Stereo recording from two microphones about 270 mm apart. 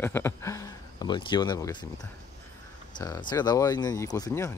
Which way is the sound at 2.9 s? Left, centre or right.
Centre.